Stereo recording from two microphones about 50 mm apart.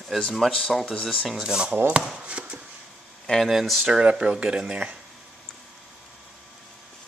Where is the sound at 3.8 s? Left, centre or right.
Centre.